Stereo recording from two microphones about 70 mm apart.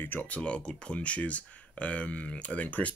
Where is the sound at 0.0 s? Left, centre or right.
Left.